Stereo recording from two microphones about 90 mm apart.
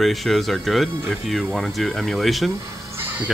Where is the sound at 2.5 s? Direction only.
35° right (ahead or behind).